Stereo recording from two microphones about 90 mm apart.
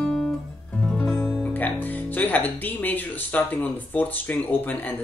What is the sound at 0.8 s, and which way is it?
Speech, 5° left (ahead or behind).